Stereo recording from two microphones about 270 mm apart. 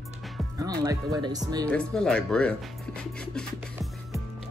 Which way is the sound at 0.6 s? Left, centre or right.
Centre.